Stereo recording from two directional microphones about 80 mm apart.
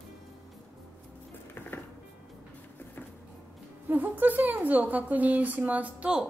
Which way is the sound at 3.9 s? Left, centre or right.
Right.